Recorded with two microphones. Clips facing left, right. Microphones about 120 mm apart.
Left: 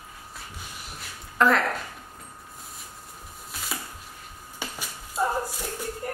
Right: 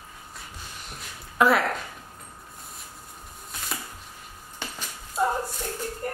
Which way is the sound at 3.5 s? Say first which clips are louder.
Even; 5° left (ahead or behind).